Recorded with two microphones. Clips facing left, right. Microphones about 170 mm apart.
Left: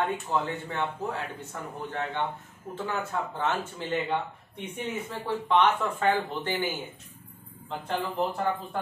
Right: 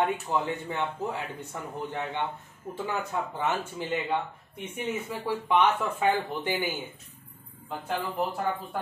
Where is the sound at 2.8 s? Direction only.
10° right (ahead or behind).